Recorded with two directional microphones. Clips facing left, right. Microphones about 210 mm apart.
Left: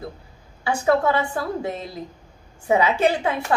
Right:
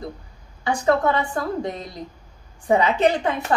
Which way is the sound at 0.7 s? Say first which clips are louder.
Even; 5° left (ahead or behind).